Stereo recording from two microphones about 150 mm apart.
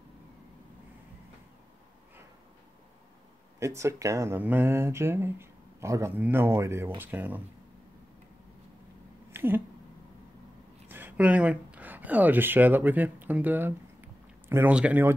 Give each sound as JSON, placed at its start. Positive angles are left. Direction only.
{"t": 3.5, "sound": "speech", "side_deg": -20}
{"t": 9.3, "sound": "a sound", "side_deg": -15}
{"t": 10.9, "sound": "speech", "side_deg": -15}